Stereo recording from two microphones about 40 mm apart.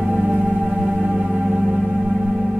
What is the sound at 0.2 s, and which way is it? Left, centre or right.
Music, right.